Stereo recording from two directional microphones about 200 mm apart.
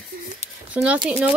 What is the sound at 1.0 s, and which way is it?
Speech, 5° right (ahead or behind).